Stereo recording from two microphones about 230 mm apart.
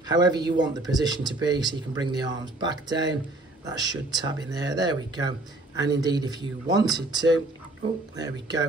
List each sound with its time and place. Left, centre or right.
0.1 s speech: centre